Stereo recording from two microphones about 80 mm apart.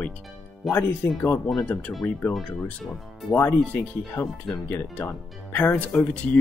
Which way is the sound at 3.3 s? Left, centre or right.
Left.